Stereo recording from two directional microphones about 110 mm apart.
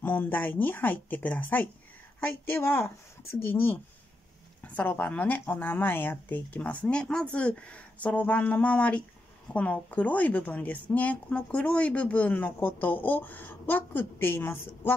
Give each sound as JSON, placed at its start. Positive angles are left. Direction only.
{"t": 0.0, "sound": "speech", "side_deg": 15}
{"t": 4.7, "sound": "speech", "side_deg": 15}